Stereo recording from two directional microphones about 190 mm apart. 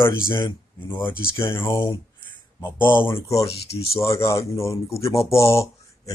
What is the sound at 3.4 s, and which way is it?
Speech, 30° left (ahead or behind).